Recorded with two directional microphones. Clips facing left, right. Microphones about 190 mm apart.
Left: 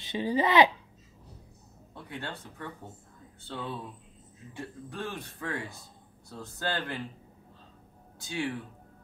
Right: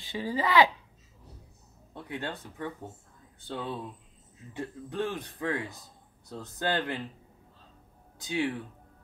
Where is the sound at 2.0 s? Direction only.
15° right (ahead or behind).